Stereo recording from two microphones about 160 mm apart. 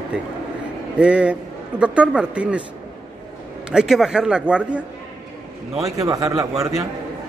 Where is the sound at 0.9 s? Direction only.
5° right (ahead or behind).